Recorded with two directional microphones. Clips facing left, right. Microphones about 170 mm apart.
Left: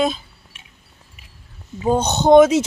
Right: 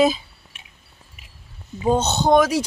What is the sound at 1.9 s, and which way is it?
Speech, 15° left (ahead or behind).